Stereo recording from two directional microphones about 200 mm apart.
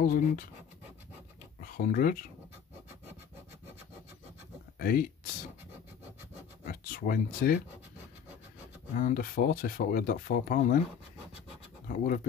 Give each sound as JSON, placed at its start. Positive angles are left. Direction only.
{"t": 1.6, "sound": "speech", "side_deg": 45}
{"t": 4.7, "sound": "speech", "side_deg": 45}
{"t": 6.6, "sound": "speech", "side_deg": 45}
{"t": 8.9, "sound": "speech", "side_deg": 45}
{"t": 11.9, "sound": "speech", "side_deg": 40}